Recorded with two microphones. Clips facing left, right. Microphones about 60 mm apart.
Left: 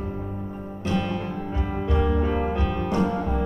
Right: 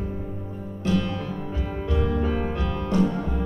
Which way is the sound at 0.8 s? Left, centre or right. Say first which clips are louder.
Right 1 dB; left.